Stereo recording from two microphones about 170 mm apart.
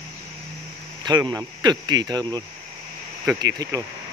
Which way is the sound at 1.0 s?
25° right (ahead or behind).